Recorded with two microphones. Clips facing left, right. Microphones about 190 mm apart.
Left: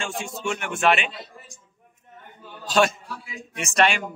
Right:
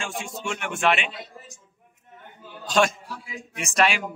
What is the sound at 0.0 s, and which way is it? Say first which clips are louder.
Speech: left 2 dB; centre (ahead or behind).